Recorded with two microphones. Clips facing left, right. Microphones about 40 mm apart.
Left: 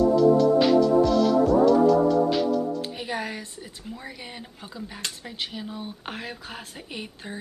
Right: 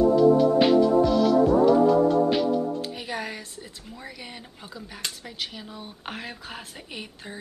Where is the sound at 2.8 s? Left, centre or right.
Centre.